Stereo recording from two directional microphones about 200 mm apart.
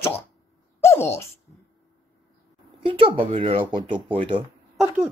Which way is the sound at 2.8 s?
25° right (ahead or behind).